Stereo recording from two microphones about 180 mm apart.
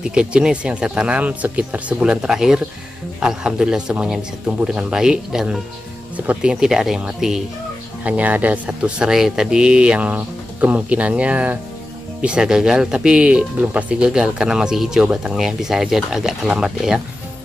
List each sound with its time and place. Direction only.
0.0 s speech: 5° right (ahead or behind)